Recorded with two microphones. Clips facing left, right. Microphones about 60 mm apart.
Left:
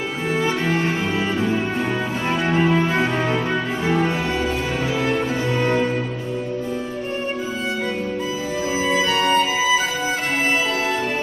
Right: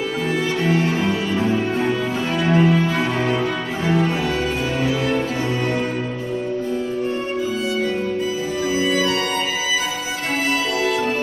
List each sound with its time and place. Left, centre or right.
0.7 s cello: left
2.4 s music: left
8.7 s music: left